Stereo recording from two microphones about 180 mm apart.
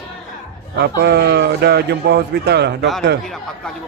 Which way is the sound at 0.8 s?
65° right (ahead or behind).